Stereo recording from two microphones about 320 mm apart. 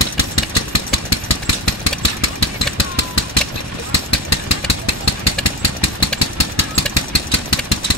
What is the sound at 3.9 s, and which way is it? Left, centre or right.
Vehicle, left.